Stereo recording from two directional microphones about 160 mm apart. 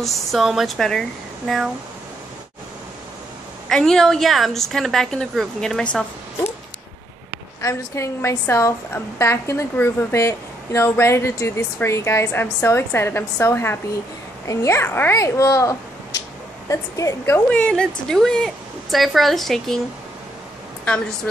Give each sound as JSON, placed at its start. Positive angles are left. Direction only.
{"t": 0.0, "sound": "a woman's voice", "side_deg": 0}
{"t": 3.6, "sound": "a woman's voice", "side_deg": 5}
{"t": 7.6, "sound": "a woman's voice", "side_deg": 15}
{"t": 17.5, "sound": "a woman's voice", "side_deg": 5}
{"t": 20.9, "sound": "a woman's voice", "side_deg": 5}